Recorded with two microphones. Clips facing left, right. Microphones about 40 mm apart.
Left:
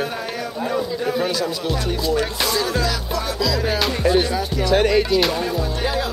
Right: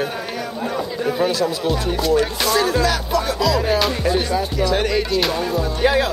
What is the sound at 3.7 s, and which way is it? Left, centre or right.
Music, centre.